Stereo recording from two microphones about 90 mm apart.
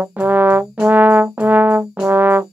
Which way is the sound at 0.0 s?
20° right (ahead or behind).